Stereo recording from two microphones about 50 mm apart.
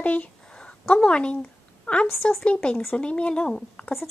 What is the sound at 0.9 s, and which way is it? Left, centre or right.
A woman's voice, centre.